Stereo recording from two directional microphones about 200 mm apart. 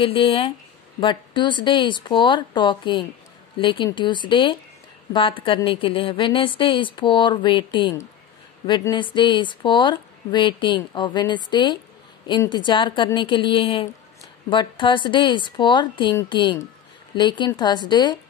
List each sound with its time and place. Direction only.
0.0 s speech: 25° left (ahead or behind)